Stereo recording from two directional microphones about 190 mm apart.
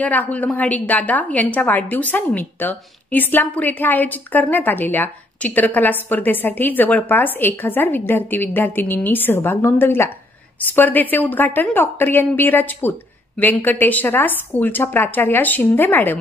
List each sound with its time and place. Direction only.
0.0 s a woman's voice: 10° left (ahead or behind)